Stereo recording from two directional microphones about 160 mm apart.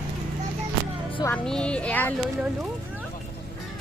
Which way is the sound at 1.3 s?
5° left (ahead or behind).